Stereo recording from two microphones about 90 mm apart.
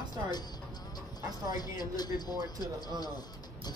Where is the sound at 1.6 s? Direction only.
50° left (ahead or behind).